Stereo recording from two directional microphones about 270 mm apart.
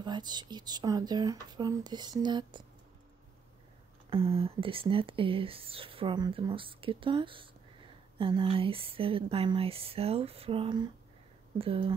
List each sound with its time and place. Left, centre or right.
0.0 s speech: centre
4.1 s speech: centre